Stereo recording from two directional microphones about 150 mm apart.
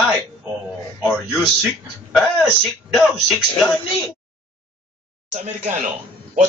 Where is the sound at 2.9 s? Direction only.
Centre (ahead or behind).